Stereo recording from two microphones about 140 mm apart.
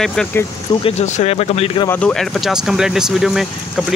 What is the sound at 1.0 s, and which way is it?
Speech, 50° left (ahead or behind).